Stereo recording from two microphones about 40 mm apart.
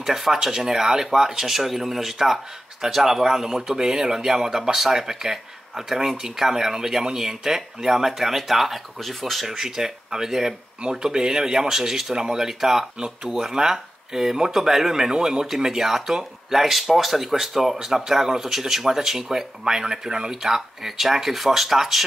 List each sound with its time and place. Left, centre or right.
0.0 s speech: centre